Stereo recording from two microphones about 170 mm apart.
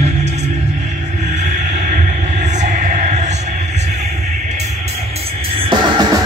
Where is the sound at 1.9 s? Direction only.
45° right (ahead or behind).